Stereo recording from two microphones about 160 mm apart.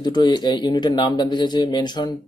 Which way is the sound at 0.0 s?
25° left (ahead or behind).